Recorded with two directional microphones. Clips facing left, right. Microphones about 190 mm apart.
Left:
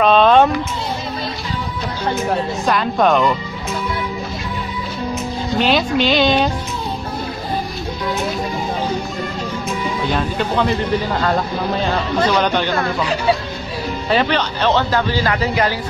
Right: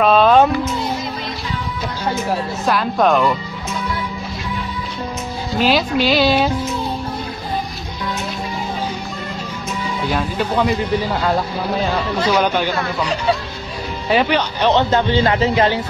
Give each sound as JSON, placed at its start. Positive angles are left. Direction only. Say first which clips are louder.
{"t": 0.0, "sound": "a sound", "louder": "even", "side_deg": -5}
{"t": 2.6, "sound": "speech", "louder": "right 1 dB", "side_deg": 0}
{"t": 5.5, "sound": "speech", "louder": "even", "side_deg": 0}
{"t": 10.1, "sound": "speech", "louder": "right 1 dB", "side_deg": -5}
{"t": 12.3, "sound": "speech", "louder": "right 3 dB", "side_deg": -10}